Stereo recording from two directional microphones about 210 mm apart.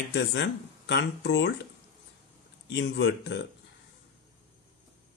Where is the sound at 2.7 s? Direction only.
60° left (ahead or behind).